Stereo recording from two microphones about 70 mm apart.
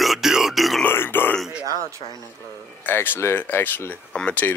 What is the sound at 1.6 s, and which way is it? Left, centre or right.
Speech, right.